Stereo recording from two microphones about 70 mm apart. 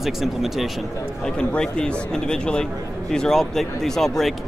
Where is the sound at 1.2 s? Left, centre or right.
Centre.